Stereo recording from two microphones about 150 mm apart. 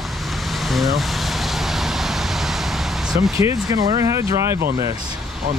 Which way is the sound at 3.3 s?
25° right (ahead or behind).